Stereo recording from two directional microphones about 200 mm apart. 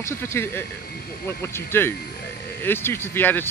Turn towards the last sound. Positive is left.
turn(degrees=10)  # may be behind; listen again after turning